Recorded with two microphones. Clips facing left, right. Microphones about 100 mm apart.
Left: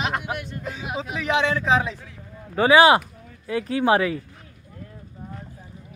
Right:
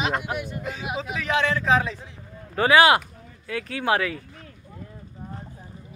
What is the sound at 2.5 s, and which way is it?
Speech, 20° left (ahead or behind).